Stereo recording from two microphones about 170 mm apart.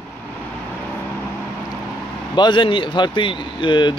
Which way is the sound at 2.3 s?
25° left (ahead or behind).